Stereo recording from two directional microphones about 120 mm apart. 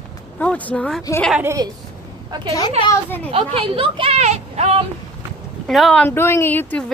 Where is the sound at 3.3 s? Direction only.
50° right (ahead or behind).